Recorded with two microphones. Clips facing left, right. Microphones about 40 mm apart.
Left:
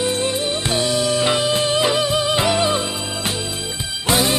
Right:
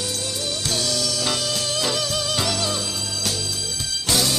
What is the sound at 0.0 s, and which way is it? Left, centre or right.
Music, left.